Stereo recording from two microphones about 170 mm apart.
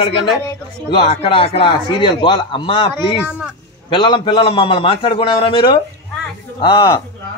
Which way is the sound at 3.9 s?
30° left (ahead or behind).